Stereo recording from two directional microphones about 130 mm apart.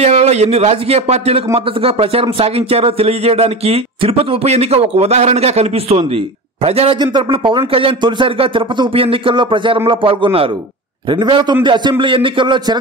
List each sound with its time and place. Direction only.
0.0 s speech: 55° right (ahead or behind)
7.0 s a man's voice: 40° right (ahead or behind)